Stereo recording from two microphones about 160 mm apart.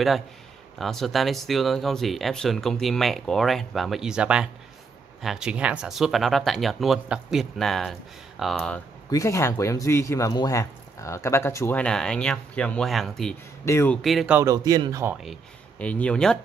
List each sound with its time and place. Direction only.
0.7 s speech: centre (ahead or behind)
9.1 s speech: 20° left (ahead or behind); by 13.4 s 5° left (ahead or behind)
13.7 s speech: 15° left (ahead or behind)
14.0 s speech: 5° right (ahead or behind)
14.4 s speech: 25° right (ahead or behind)
15.8 s speech: 10° left (ahead or behind)